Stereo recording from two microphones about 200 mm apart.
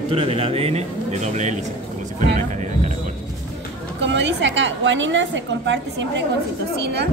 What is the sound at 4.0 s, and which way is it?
A woman's voice, 65° right (ahead or behind).